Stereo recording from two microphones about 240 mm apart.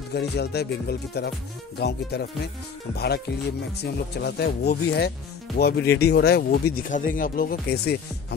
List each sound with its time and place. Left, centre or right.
0.1 s speech: left
3.7 s speech: left